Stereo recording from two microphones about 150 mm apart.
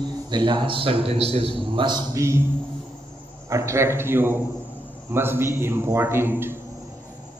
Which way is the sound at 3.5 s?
20° right (ahead or behind).